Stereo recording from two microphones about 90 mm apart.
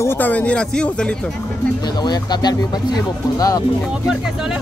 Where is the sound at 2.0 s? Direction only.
50° left (ahead or behind).